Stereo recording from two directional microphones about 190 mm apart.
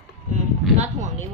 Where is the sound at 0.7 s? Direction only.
40° right (ahead or behind).